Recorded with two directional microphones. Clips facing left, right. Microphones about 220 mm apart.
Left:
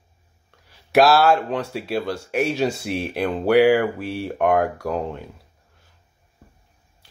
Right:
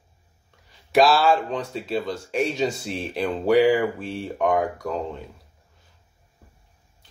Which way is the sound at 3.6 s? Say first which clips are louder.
Left 4 dB; 70° left (ahead or behind).